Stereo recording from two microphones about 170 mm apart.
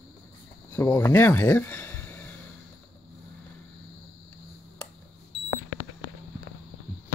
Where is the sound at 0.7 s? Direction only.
15° left (ahead or behind).